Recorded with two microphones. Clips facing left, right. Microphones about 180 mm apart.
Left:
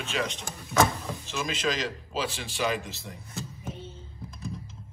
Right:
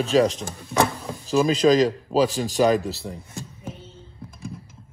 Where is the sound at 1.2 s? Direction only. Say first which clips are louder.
Right 13 dB; 35° right (ahead or behind).